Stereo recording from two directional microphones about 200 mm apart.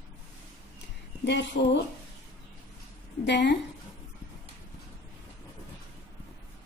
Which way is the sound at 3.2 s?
60° left (ahead or behind).